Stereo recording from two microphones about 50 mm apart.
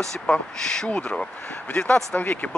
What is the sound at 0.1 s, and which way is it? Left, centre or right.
Speech, centre.